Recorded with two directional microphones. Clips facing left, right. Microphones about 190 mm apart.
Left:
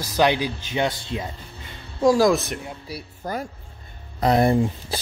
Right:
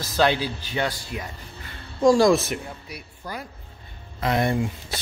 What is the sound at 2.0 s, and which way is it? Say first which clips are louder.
Speech: right 1 dB; 5° left (ahead or behind).